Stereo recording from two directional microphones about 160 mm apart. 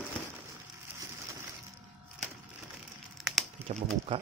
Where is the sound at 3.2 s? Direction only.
Centre (ahead or behind).